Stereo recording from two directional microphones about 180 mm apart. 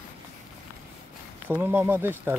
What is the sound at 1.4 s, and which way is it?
Speech, 10° right (ahead or behind).